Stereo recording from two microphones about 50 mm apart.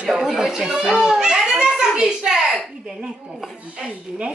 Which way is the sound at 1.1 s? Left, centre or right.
Centre.